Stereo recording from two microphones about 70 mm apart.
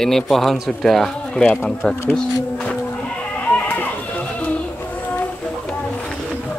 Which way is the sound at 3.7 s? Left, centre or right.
Left.